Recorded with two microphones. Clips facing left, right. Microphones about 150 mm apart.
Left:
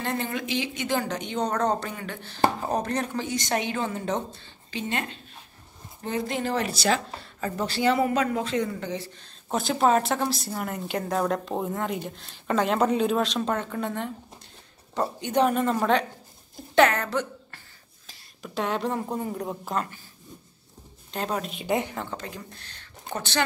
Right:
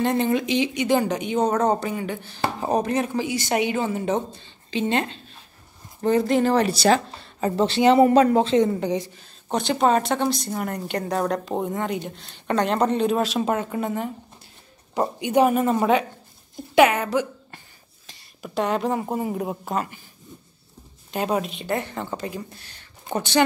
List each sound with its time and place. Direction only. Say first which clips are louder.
0.0 s speech: right 8 dB; 20° right (ahead or behind)
4.6 s speech: right 7 dB; 25° right (ahead or behind)
6.0 s speech: right 9 dB; 40° right (ahead or behind)
7.3 s speech: right 8 dB; 25° right (ahead or behind)
8.0 s speech: right 9 dB; 35° right (ahead or behind); by 9.1 s 15° right (ahead or behind)
9.5 s a woman's voice: right 2 dB; centre (ahead or behind)
18.0 s a sound: right 3 dB; centre (ahead or behind)
19.1 s a woman's voice: right 4 dB; 10° right (ahead or behind)
21.1 s speech: right 5 dB; 10° right (ahead or behind)
21.6 s a woman's voice: even; 15° left (ahead or behind)
21.9 s speech: right 5 dB; 10° right (ahead or behind)